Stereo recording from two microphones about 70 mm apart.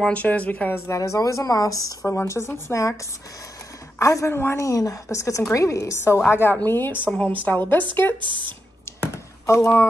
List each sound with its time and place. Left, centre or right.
0.0 s speech: centre
0.8 s a woman's voice: left
2.1 s speech: left
4.0 s a woman's voice: left
4.3 s a woman's voice: left
6.2 s speech: left
9.1 s a sound: left